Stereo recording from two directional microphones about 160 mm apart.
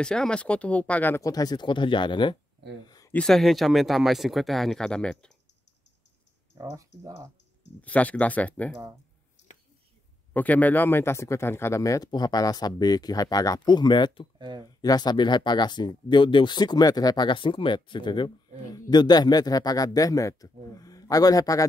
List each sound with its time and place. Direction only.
0.0 s speech: 5° left (ahead or behind); by 2.3 s 30° left (ahead or behind)
3.1 s speech: 5° left (ahead or behind)
6.6 s speech: 20° right (ahead or behind)
7.8 s speech: 10° left (ahead or behind)
10.3 s speech: 10° left (ahead or behind); by 14.2 s 30° left (ahead or behind)
14.4 s speech: 30° right (ahead or behind)
14.8 s speech: 25° left (ahead or behind)